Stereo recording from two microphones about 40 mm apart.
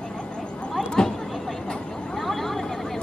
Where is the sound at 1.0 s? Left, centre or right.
Centre.